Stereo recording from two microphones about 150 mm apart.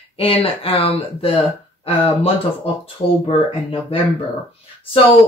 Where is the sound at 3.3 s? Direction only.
35° left (ahead or behind).